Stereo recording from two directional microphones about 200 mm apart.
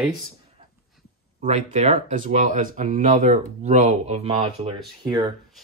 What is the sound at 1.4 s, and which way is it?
Speech, 35° right (ahead or behind).